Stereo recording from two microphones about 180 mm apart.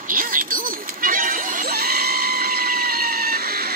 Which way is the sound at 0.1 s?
50° right (ahead or behind).